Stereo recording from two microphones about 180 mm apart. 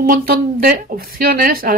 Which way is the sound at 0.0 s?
55° right (ahead or behind).